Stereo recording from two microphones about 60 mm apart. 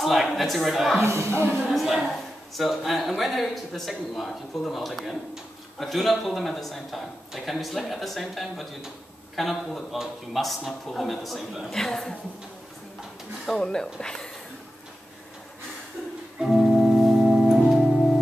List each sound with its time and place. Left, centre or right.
0.0 s speech: centre
1.0 s speech: right
1.7 s speech: centre
13.5 s speech: centre
16.3 s organ: centre
17.7 s music: centre